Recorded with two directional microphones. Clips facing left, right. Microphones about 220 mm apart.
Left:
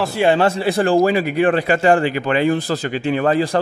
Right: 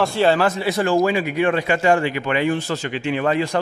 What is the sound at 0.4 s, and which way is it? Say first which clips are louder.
A man's voice: left 3 dB; 30° left (ahead or behind).